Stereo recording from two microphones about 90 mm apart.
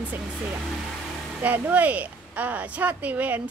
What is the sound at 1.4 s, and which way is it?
Speech, 20° right (ahead or behind).